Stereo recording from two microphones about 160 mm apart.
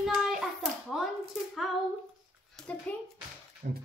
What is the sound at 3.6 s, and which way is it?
Speech, 60° right (ahead or behind).